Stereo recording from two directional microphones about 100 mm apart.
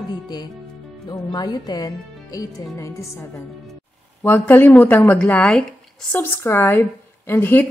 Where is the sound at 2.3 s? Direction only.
35° left (ahead or behind).